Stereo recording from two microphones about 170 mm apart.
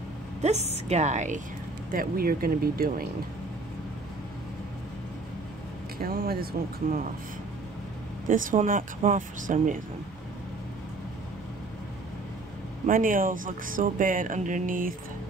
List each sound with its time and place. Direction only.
0.4 s a woman's voice: 40° right (ahead or behind)
1.9 s speech: 60° right (ahead or behind)
5.9 s speech: 65° right (ahead or behind)
8.3 s speech: 50° right (ahead or behind)
12.8 s speech: 55° right (ahead or behind)